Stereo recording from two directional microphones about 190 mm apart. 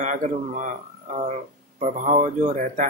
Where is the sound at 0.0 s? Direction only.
40° right (ahead or behind).